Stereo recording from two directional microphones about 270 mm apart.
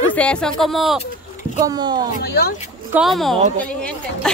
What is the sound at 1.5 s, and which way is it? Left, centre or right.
Speech, centre.